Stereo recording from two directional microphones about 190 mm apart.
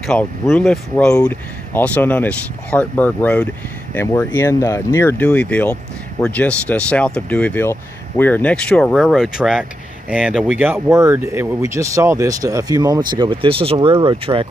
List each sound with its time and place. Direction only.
0.0 s speech: centre (ahead or behind); by 14.5 s 30° right (ahead or behind)